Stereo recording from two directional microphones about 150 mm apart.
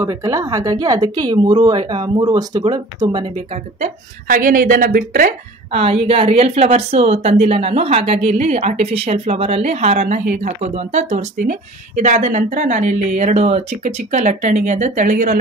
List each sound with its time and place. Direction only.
0.0 s speech: 20° right (ahead or behind)
4.3 s speech: 65° right (ahead or behind)
5.7 s a woman's voice: 40° right (ahead or behind); by 15.3 s 60° right (ahead or behind)